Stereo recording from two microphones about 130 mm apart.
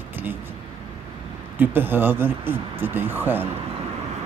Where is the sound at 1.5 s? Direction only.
15° right (ahead or behind).